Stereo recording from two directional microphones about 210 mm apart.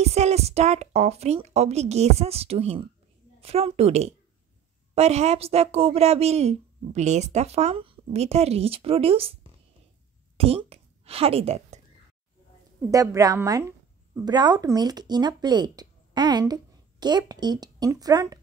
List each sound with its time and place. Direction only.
0.0 s a woman's voice: 30° right (ahead or behind)
12.9 s speech: 15° right (ahead or behind)